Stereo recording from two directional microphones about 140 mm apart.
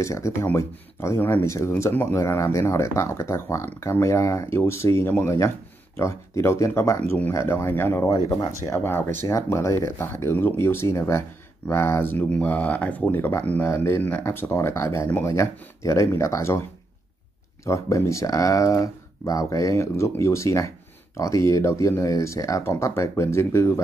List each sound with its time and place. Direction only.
0.0 s speech: 20° left (ahead or behind)
17.6 s speech: 20° left (ahead or behind)